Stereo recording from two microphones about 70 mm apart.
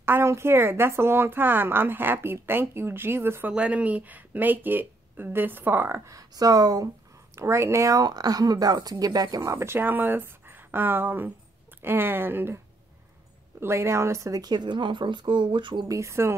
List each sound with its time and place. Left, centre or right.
0.0 s a woman's voice: right
3.5 s speech: centre
6.0 s speech: right
7.3 s speech: right
7.9 s speech: right
9.7 s a woman's voice: right
13.6 s a woman's voice: right
14.4 s speech: right
15.9 s speech: right